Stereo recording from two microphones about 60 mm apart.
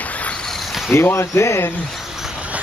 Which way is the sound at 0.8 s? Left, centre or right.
Left.